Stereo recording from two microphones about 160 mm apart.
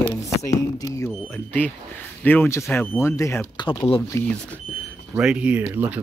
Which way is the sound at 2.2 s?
10° left (ahead or behind).